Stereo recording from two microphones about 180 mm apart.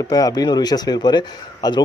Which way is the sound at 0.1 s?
20° left (ahead or behind).